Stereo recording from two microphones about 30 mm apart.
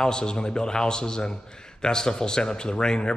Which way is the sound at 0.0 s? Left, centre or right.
Left.